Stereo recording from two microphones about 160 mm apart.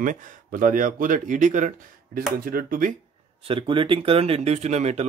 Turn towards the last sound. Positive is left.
turn(degrees=-45)  # may be behind; listen again after turning